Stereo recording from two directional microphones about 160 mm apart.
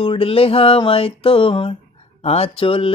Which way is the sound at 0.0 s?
35° left (ahead or behind).